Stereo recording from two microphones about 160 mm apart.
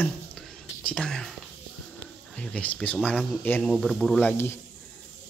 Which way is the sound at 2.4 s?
5° left (ahead or behind).